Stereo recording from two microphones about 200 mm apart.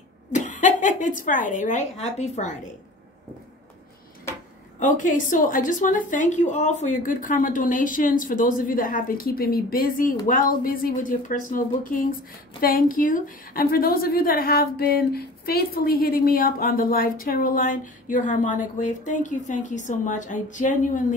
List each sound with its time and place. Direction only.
0.3 s speech: 40° left (ahead or behind)
4.7 s a woman's voice: 40° left (ahead or behind)